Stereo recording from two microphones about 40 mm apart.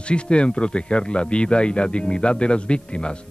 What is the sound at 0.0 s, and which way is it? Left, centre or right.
Speech, left.